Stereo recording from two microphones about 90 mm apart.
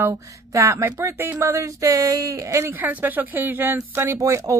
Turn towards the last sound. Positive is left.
turn(degrees=-35)  # may be behind; listen again after turning